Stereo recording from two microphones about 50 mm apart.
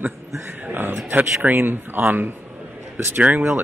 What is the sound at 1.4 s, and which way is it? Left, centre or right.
Speech, right.